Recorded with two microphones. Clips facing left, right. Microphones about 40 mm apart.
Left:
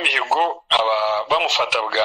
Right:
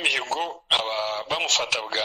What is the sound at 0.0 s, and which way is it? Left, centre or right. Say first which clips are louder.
Speech: left 7 dB; centre.